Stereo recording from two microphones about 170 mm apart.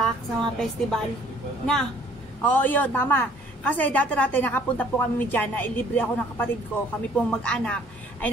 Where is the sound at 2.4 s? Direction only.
10° left (ahead or behind).